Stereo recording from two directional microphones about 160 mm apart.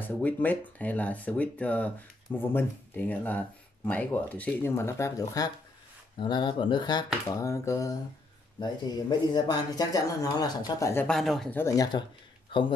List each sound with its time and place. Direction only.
0.0 s speech: 10° left (ahead or behind)
11.1 s speech: centre (ahead or behind)
11.5 s speech: 20° left (ahead or behind)